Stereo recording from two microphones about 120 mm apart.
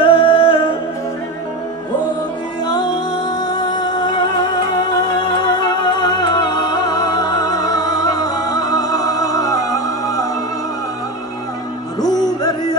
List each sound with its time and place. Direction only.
0.0 s music: 45° left (ahead or behind)
2.6 s music: 35° left (ahead or behind)
12.1 s music: 35° left (ahead or behind)